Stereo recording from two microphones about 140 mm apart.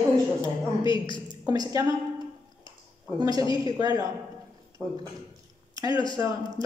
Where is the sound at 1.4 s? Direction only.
30° right (ahead or behind).